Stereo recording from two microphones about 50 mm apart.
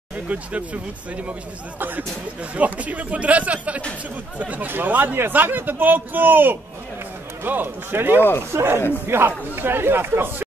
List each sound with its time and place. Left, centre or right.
0.3 s speech: right
1.8 s a man's voice: right